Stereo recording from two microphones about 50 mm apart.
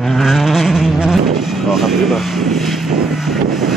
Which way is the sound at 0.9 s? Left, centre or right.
Centre.